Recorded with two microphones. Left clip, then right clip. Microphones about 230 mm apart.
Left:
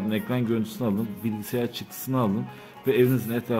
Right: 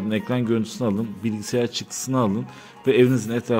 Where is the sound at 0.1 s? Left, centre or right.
Centre.